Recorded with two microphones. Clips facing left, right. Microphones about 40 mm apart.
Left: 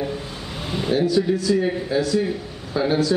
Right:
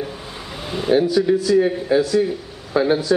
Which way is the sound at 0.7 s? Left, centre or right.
Centre.